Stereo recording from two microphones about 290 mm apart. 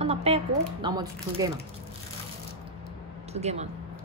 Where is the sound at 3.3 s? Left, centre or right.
Right.